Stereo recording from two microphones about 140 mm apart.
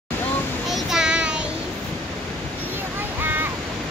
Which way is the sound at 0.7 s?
Centre (ahead or behind).